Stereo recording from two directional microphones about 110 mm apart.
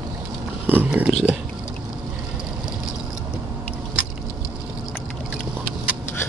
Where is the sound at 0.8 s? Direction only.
10° right (ahead or behind).